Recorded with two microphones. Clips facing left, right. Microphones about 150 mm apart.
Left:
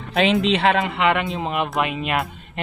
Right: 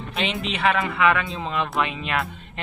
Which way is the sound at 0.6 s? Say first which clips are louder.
Left 3 dB; 30° left (ahead or behind).